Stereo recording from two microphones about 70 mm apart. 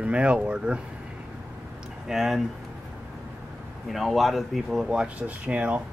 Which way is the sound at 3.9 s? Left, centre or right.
Centre.